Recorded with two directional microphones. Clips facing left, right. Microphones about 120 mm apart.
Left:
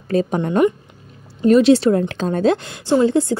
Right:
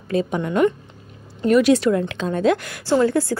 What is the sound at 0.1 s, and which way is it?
Speech, 40° left (ahead or behind).